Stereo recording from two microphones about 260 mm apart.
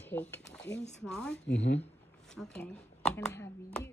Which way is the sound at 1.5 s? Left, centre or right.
Left.